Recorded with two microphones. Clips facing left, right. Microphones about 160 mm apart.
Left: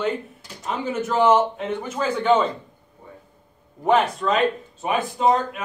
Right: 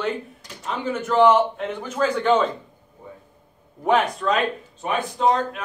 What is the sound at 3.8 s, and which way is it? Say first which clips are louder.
A man's voice: left 1 dB; centre (ahead or behind).